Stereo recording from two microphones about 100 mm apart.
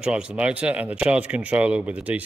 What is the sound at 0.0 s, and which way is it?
Speech, 10° right (ahead or behind).